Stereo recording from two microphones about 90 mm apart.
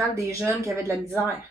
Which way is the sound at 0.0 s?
35° right (ahead or behind).